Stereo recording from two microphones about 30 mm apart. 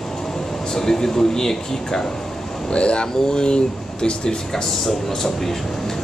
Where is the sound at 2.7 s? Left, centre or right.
Left.